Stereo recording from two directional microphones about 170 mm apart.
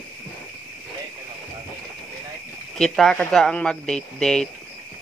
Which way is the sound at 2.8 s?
5° left (ahead or behind).